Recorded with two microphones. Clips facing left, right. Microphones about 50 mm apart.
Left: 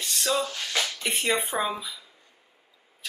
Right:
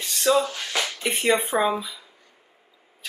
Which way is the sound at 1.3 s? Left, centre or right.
Centre.